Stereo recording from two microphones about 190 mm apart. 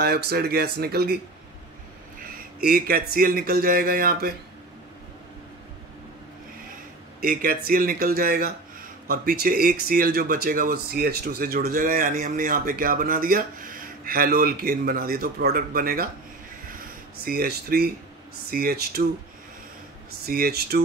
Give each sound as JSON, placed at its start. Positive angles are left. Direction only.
{"t": 0.0, "sound": "speech", "side_deg": -55}
{"t": 2.6, "sound": "speech", "side_deg": -50}
{"t": 7.2, "sound": "speech", "side_deg": -50}
{"t": 17.2, "sound": "speech", "side_deg": -50}
{"t": 20.2, "sound": "speech", "side_deg": -55}